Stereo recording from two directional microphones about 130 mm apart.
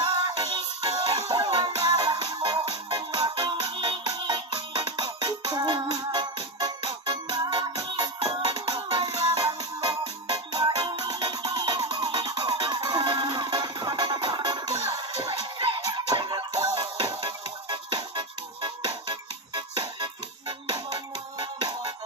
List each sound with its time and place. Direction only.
0.4 s music: 30° right (ahead or behind)